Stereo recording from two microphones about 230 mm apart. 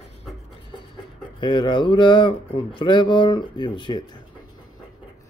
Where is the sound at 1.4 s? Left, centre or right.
Left.